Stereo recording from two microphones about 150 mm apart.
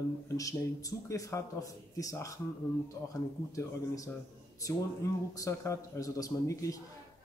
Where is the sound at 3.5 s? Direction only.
20° left (ahead or behind).